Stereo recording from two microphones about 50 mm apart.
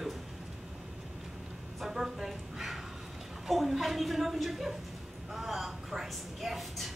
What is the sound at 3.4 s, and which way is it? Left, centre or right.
A woman's voice, centre.